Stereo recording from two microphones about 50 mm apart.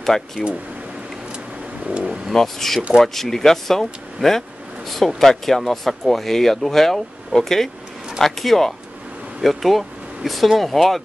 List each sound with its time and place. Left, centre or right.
0.0 s speech: centre
1.9 s speech: centre
2.3 s speech: centre